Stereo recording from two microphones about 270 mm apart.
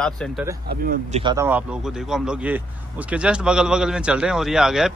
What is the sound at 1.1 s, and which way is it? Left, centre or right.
Speech, right.